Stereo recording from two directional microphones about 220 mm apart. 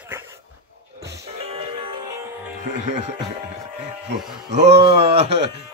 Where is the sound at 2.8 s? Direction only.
35° right (ahead or behind).